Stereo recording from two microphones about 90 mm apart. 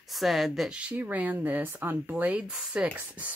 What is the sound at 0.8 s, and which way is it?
Speech, 15° right (ahead or behind).